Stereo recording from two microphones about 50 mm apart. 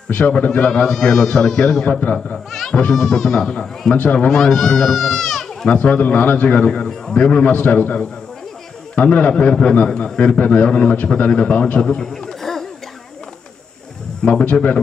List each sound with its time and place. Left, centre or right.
0.1 s a man's voice: left
0.8 s speech: centre
1.9 s a man's voice: left
2.5 s a sound: centre
2.9 s speech: centre
3.9 s a man's voice: left
4.3 s speech: centre
5.7 s a man's voice: left
8.9 s a man's voice: left
12.3 s a sound: centre
14.2 s a man's voice: left